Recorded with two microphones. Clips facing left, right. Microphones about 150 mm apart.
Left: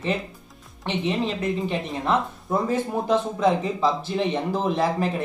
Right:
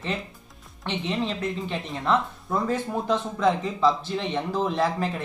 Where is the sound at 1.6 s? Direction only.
15° left (ahead or behind).